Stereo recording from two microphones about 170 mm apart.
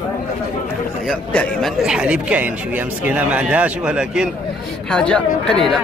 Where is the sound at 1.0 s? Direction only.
5° left (ahead or behind).